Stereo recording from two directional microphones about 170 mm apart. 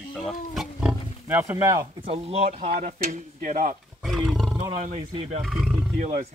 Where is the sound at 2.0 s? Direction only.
35° right (ahead or behind).